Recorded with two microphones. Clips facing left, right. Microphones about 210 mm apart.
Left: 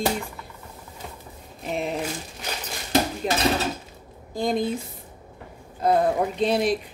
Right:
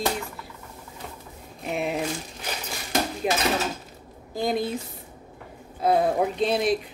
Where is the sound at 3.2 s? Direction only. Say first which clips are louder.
Even; 10° right (ahead or behind).